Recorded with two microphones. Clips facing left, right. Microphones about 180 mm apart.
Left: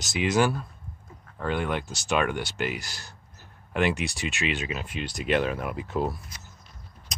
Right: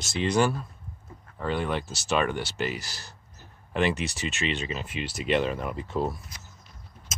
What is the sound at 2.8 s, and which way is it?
Speech, 35° right (ahead or behind).